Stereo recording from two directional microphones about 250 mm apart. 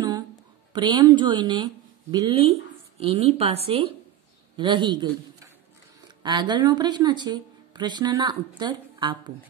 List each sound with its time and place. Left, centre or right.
0.7 s a woman's voice: centre